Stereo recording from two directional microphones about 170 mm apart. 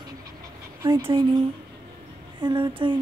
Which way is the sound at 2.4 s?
25° right (ahead or behind).